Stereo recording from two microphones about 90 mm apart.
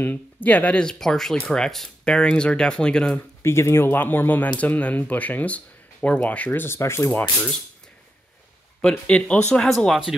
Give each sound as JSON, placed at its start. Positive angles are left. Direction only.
{"t": 0.0, "sound": "speech", "side_deg": 20}
{"t": 3.2, "sound": "speech", "side_deg": 30}
{"t": 8.8, "sound": "speech", "side_deg": 15}